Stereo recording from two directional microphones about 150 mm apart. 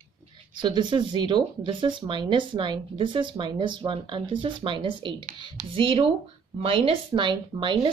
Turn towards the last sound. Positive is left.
turn(degrees=-30)  # may be behind; listen again after turning